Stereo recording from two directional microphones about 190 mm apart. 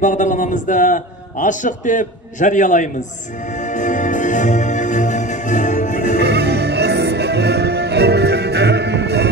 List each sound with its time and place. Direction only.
0.0 s a man's voice: 40° left (ahead or behind)
3.7 s music: 40° left (ahead or behind)
6.1 s music: 60° right (ahead or behind)